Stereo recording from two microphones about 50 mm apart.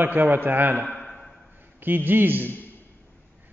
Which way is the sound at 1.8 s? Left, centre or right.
Right.